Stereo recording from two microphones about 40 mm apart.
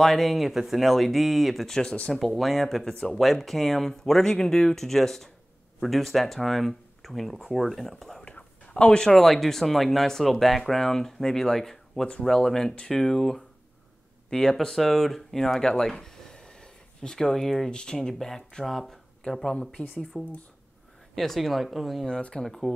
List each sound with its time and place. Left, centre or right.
0.0 s speech: centre
1.7 s speech: centre
2.1 s speech: centre
2.8 s speech: left
3.2 s speech: centre
8.3 s a sound: left
9.1 s speech: centre
15.8 s a sound: centre
17.6 s speech: left
17.9 s speech: centre
19.2 s speech: centre